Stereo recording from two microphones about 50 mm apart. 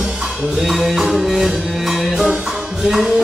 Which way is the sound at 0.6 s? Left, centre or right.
Centre.